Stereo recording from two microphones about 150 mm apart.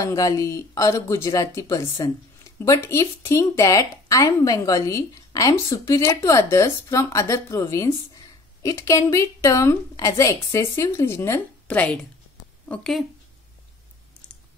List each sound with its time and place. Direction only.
0.0 s speech: 20° left (ahead or behind); by 13.0 s 5° left (ahead or behind)